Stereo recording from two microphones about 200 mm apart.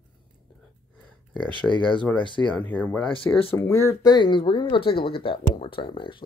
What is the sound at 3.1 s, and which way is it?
Speech, 25° left (ahead or behind).